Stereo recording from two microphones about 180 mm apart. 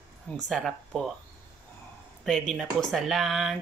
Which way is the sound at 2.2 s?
Centre (ahead or behind).